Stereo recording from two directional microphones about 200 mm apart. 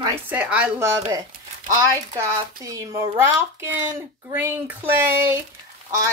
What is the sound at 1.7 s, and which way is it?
Speech, 15° right (ahead or behind).